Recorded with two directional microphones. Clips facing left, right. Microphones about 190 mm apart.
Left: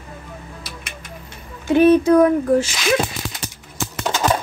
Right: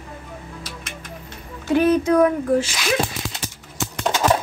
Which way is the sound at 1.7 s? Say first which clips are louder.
Left 4 dB; 25° left (ahead or behind).